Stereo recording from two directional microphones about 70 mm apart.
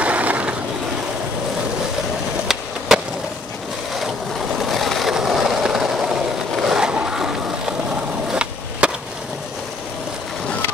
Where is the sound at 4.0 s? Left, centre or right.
Centre.